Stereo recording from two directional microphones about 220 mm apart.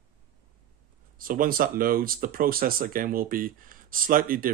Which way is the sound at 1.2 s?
40° right (ahead or behind).